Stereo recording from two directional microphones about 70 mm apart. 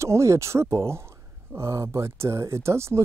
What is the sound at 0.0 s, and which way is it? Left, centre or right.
Speech, right.